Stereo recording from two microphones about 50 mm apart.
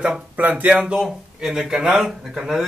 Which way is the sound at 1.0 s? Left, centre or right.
Centre.